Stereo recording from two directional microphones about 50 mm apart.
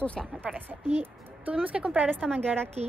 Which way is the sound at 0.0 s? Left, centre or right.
Left.